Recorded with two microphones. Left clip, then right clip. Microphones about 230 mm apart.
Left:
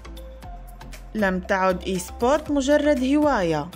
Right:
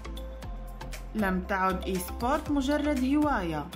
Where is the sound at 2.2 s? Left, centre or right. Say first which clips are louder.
Left 8 dB; left.